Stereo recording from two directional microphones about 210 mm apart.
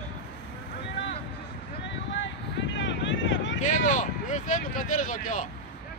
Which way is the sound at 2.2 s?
60° left (ahead or behind).